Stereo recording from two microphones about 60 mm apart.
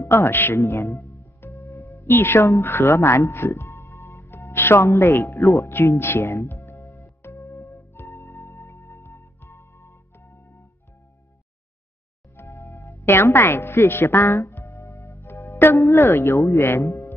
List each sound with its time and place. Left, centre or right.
0.0 s speech: left
1.4 s music: left
4.3 s speech: left
5.7 s music: left
12.4 s music: left
13.0 s a woman's voice: left
14.7 s music: left
15.8 s a woman's voice: left